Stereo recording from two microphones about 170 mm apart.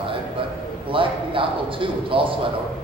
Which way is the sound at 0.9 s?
30° right (ahead or behind).